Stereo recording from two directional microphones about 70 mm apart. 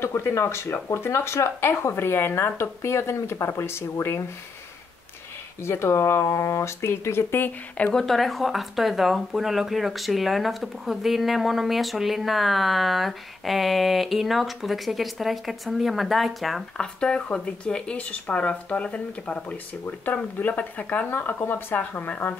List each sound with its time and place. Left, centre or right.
0.0 s speech: left
5.6 s speech: left
7.9 s speech: centre
16.7 s speech: centre